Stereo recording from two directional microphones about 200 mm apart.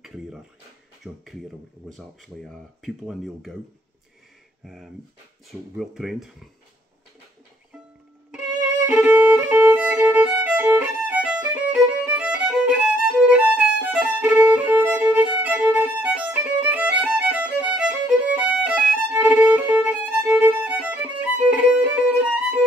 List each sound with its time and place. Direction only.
1.0 s speech: 5° right (ahead or behind)
5.8 s speech: centre (ahead or behind)
8.8 s violin: 10° right (ahead or behind)